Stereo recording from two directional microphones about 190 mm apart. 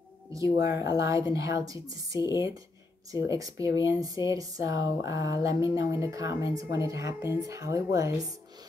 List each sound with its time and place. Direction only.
0.3 s speech: 15° right (ahead or behind)
2.1 s speech: 20° left (ahead or behind)
3.1 s speech: 15° right (ahead or behind)